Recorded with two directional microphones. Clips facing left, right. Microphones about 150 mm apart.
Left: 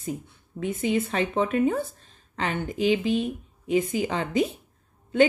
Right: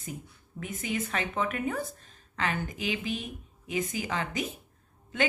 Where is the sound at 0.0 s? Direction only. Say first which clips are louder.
Left 8 dB; 30° left (ahead or behind).